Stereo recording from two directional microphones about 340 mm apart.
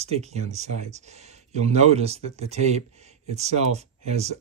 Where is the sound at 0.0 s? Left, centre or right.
Centre.